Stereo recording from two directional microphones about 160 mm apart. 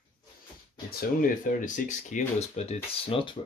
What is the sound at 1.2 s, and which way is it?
Speech, 55° left (ahead or behind).